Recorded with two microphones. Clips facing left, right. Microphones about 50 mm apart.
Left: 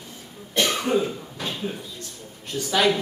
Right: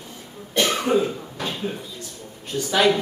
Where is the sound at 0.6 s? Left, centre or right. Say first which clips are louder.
Right 2 dB; centre.